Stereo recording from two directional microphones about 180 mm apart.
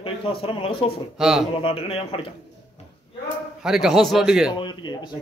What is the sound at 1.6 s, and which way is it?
Speech, 30° left (ahead or behind).